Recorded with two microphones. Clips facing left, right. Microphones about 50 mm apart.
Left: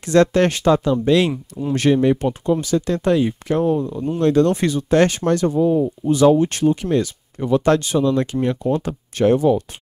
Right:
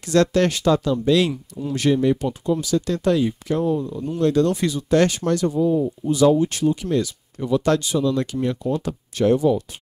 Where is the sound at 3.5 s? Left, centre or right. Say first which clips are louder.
Left 3 dB; left.